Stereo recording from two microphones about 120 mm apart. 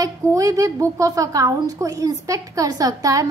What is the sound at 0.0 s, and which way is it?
A woman's voice, 25° right (ahead or behind).